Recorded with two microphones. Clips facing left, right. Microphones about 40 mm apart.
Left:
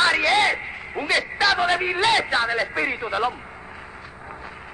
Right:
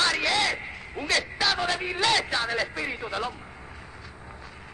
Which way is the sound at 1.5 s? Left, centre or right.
Left.